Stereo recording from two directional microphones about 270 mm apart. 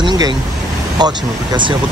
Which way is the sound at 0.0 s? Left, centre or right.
Centre.